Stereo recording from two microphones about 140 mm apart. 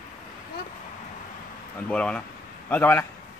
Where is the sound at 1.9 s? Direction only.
5° left (ahead or behind).